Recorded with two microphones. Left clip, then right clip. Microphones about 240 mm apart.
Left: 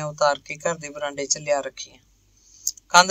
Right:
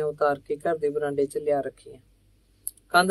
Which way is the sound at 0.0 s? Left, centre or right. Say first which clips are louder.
Left 3 dB; left.